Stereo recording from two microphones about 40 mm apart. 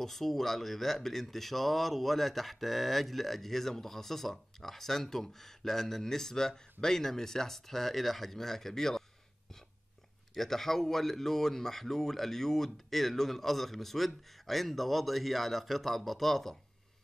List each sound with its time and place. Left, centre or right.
0.0 s speech: centre
10.3 s speech: centre